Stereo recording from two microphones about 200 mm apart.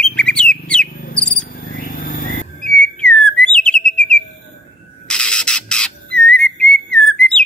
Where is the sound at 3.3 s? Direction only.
5° left (ahead or behind).